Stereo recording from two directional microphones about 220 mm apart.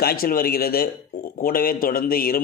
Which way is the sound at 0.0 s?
40° left (ahead or behind).